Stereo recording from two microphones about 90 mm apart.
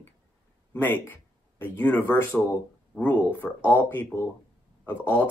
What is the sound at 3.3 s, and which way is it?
Speech, 20° left (ahead or behind).